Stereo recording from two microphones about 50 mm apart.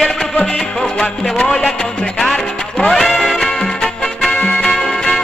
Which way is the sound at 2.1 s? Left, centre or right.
Centre.